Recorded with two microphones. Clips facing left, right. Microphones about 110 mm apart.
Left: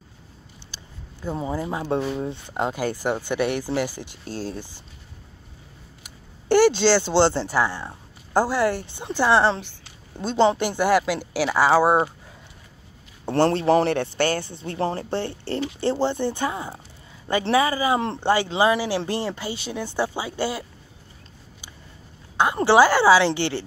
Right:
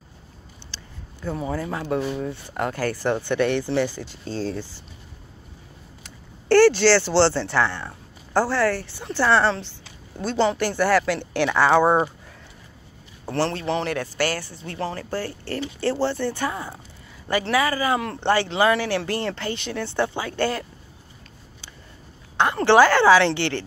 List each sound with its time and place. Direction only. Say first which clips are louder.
0.7 s a sound: right 1 dB; 15° left (ahead or behind)
1.2 s speech: even; 20° left (ahead or behind)
6.0 s speech: right 2 dB; 15° left (ahead or behind)
13.2 s a man's voice: left 5 dB; 35° left (ahead or behind); by 20.6 s 10° left (ahead or behind)
22.4 s speech: right 1 dB; 15° left (ahead or behind)